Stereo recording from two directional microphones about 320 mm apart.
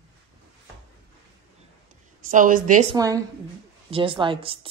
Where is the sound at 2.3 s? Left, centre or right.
Right.